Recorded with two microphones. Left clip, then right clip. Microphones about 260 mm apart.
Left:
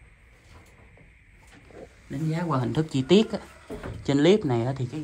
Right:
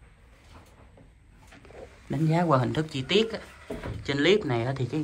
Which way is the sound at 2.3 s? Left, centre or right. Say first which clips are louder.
Right 4 dB; centre.